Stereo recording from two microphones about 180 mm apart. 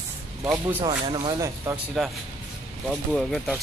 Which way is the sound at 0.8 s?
30° right (ahead or behind).